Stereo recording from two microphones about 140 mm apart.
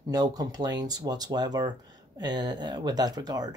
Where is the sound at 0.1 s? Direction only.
30° right (ahead or behind).